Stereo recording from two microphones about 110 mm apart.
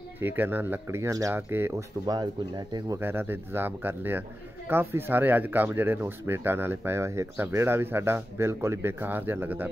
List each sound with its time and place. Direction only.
0.2 s speech: 20° right (ahead or behind)
2.0 s speech: 40° right (ahead or behind)
3.0 s speech: 20° right (ahead or behind)